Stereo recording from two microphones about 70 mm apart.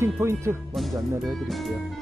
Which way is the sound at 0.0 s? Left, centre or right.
Right.